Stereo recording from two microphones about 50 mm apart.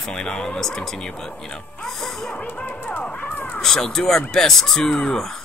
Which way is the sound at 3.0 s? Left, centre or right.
Left.